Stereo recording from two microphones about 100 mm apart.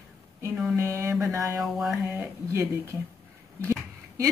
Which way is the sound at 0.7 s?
30° right (ahead or behind).